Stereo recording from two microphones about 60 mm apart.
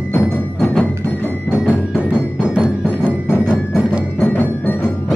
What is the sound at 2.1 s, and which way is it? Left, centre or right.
Music, centre.